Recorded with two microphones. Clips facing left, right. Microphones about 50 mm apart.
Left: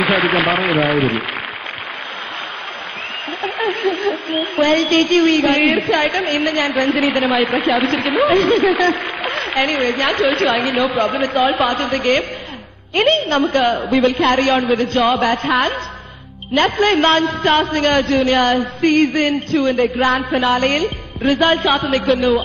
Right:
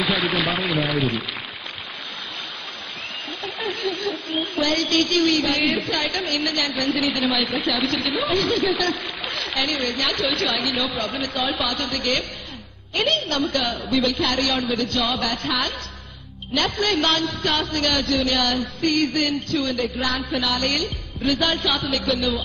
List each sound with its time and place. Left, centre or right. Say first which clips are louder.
0.0 s a woman's voice: left 7 dB; left
0.7 s speech: left 7 dB; left
3.4 s a woman's voice: left 8 dB; left